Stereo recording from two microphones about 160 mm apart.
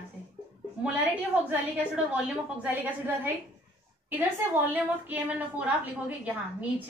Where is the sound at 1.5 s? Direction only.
5° right (ahead or behind).